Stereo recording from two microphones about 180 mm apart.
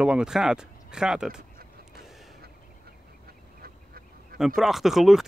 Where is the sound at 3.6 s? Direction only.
55° right (ahead or behind).